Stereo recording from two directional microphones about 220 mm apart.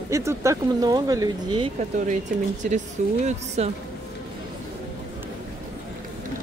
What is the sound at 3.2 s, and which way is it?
Speech, 30° right (ahead or behind).